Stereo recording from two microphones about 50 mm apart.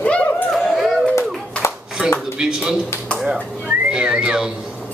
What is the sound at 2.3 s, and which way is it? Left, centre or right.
A man's voice, centre.